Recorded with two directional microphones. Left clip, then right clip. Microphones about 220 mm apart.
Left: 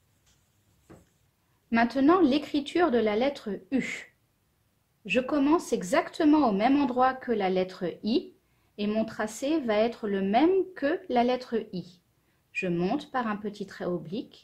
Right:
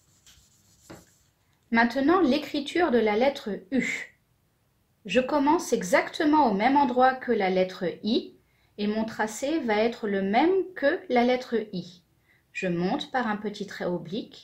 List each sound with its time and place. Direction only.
1.7 s speech: 35° left (ahead or behind)
5.0 s speech: 30° left (ahead or behind)